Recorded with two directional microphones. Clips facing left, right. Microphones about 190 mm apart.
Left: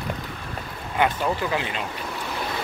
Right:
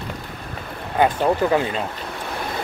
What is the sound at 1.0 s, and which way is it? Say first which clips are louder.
Speech: right 5 dB; 40° right (ahead or behind).